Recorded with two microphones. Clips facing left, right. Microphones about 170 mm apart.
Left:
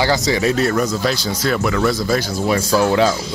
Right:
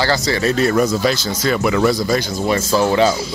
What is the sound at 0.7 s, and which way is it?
Speech, 10° right (ahead or behind).